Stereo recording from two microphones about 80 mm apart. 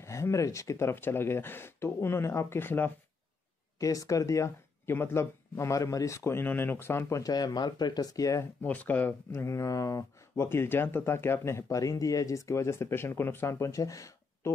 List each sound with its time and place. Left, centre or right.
0.0 s speech: left
3.8 s speech: left
4.8 s speech: left
8.6 s speech: centre
9.4 s speech: left